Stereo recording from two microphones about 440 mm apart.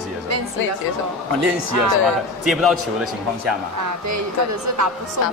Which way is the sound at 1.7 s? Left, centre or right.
Right.